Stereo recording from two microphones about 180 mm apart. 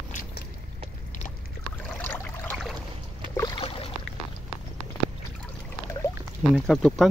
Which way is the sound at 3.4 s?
25° left (ahead or behind).